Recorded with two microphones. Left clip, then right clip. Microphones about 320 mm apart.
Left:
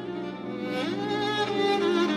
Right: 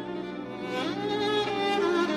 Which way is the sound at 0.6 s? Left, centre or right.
Right.